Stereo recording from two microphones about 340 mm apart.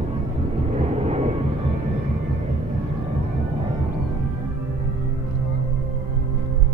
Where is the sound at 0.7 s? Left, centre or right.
Centre.